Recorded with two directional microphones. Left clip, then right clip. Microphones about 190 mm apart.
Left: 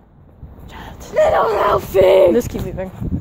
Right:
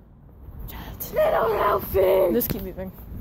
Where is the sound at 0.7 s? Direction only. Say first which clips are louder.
Left 5 dB; 15° left (ahead or behind).